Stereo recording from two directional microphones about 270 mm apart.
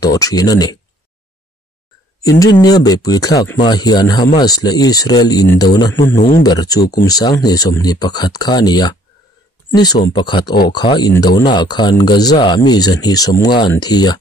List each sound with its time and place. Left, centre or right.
0.0 s speech: centre
2.2 s speech: centre
6.1 s speech: left
6.4 s speech: centre